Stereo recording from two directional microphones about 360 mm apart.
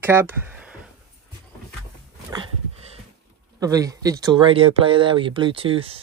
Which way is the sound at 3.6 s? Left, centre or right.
Centre.